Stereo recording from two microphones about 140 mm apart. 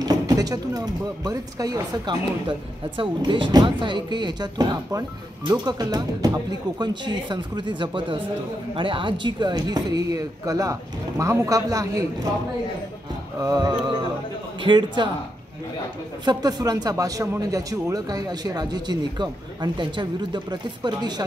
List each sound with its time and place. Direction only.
0.0 s speech: 25° right (ahead or behind)
13.4 s speech: 30° right (ahead or behind)
16.3 s speech: 30° right (ahead or behind)